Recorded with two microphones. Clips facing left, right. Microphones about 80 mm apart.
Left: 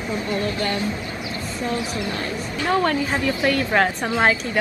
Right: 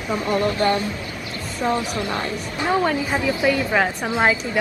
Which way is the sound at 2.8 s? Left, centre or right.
Centre.